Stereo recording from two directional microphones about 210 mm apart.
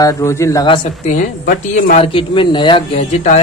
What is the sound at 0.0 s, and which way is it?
Speech, 15° left (ahead or behind).